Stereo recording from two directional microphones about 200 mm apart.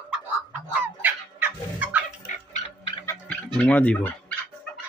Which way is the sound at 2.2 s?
40° left (ahead or behind).